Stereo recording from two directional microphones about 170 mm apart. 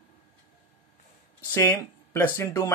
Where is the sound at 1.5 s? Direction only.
15° left (ahead or behind).